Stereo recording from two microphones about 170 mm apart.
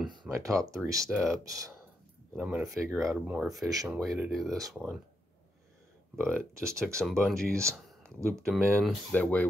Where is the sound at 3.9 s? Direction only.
Centre (ahead or behind).